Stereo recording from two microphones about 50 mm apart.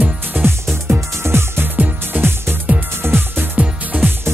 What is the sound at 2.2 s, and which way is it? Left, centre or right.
Music, right.